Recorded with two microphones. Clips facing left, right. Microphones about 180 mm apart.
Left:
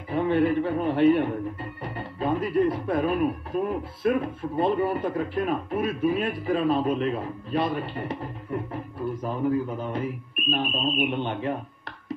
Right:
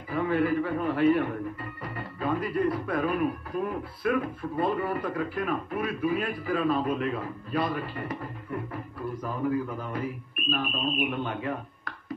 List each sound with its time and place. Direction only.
0.1 s a man's voice: 25° left (ahead or behind)